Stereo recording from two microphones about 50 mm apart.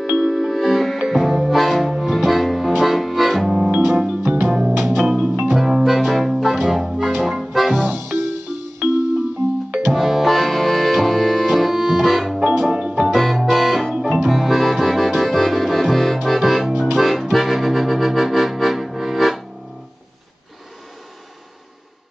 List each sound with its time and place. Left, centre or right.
0.1 s music: centre
3.5 s organ: centre
5.0 s music: centre
7.8 s music: right
9.7 s music: right
9.9 s music: centre
13.1 s music: centre
13.9 s music: centre
14.2 s accordion: centre
16.3 s music: centre